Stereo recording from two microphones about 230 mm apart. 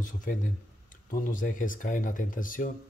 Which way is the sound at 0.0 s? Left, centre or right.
Left.